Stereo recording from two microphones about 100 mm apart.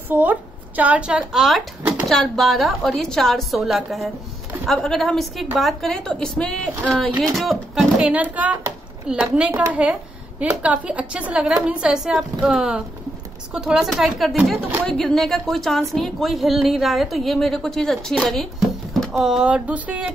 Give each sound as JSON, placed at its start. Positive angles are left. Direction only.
{"t": 0.1, "sound": "a woman's voice", "side_deg": -20}
{"t": 1.8, "sound": "a sound", "side_deg": -15}
{"t": 2.0, "sound": "a woman's voice", "side_deg": 5}
{"t": 8.0, "sound": "a woman's voice", "side_deg": -15}